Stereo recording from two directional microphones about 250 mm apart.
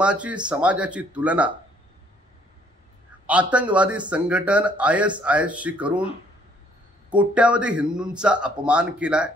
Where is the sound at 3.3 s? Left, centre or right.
Centre.